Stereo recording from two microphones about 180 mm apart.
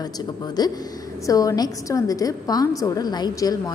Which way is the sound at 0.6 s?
20° left (ahead or behind).